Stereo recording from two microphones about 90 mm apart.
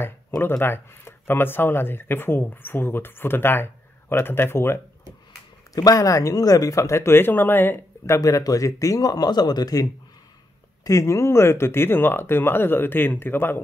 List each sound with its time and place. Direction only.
0.4 s speech: 25° left (ahead or behind)
5.8 s speech: 45° left (ahead or behind); by 8.2 s 25° left (ahead or behind)
8.2 s speech: 40° left (ahead or behind); by 13.6 s 25° left (ahead or behind)